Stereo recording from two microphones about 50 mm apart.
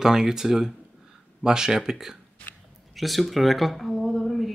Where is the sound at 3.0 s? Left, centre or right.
Centre.